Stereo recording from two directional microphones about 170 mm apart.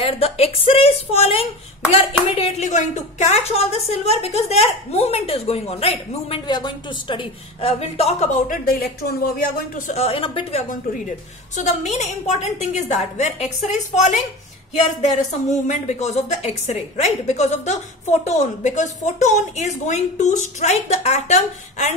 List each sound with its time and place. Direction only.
0.0 s speech: 35° left (ahead or behind)
6.4 s speech: 25° left (ahead or behind)
7.6 s a woman's voice: 35° left (ahead or behind); by 9.7 s 65° left (ahead or behind)
9.8 s speech: 35° left (ahead or behind)
11.5 s a woman's voice: 45° left (ahead or behind)
15.6 s a woman's voice: 40° left (ahead or behind)